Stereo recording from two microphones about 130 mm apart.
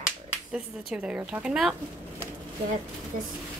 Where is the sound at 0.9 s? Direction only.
5° right (ahead or behind).